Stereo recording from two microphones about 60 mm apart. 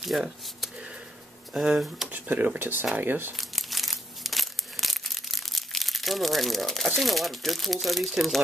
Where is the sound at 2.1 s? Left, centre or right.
Right.